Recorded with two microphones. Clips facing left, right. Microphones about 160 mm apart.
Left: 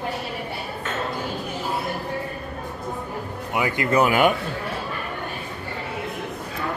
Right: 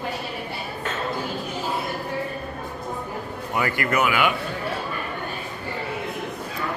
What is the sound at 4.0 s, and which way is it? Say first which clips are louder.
Speech: left 4 dB; 40° left (ahead or behind).